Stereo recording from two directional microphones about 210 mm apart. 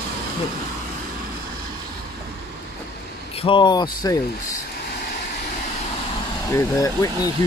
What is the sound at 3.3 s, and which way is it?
Speech, 25° left (ahead or behind).